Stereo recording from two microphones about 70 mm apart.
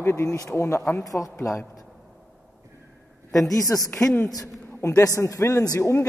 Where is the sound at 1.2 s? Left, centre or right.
Left.